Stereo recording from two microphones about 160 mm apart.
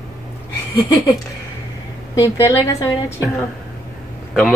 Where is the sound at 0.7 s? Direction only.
25° left (ahead or behind).